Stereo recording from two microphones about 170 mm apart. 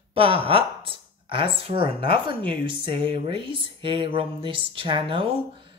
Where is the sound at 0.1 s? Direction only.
35° right (ahead or behind).